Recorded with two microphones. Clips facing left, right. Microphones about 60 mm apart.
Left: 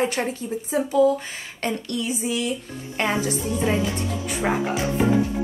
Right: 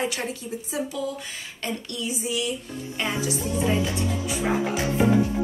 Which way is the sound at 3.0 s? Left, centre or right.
Left.